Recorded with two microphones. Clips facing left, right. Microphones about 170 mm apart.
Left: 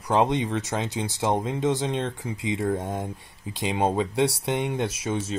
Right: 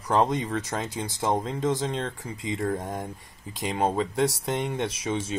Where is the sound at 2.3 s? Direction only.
90° left.